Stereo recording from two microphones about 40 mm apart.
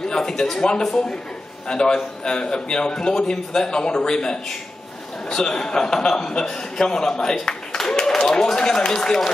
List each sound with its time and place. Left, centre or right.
0.1 s a man's voice: centre